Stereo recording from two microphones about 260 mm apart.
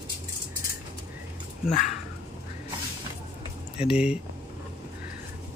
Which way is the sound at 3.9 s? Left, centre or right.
Centre.